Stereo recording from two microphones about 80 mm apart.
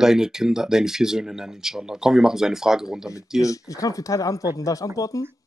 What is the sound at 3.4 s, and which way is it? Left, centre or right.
Speech, left.